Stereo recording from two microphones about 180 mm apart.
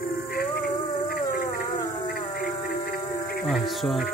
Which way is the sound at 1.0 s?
50° left (ahead or behind).